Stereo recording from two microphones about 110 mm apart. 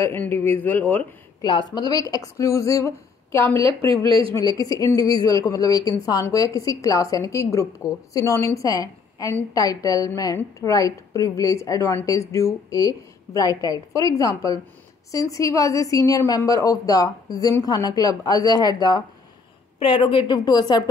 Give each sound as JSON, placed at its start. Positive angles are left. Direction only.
{"t": 0.0, "sound": "speech", "side_deg": 20}
{"t": 1.4, "sound": "speech", "side_deg": 40}
{"t": 3.5, "sound": "speech", "side_deg": -55}
{"t": 4.4, "sound": "a woman's voice", "side_deg": 35}
{"t": 19.8, "sound": "a woman's voice", "side_deg": 50}